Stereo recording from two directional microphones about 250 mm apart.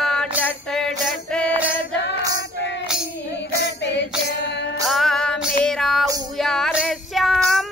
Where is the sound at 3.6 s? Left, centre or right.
Left.